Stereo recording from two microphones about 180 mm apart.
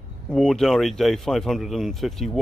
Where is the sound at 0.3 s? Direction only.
5° left (ahead or behind).